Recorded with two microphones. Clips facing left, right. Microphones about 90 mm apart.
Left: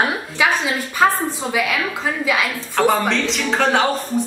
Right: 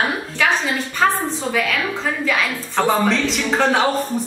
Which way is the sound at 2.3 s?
10° left (ahead or behind).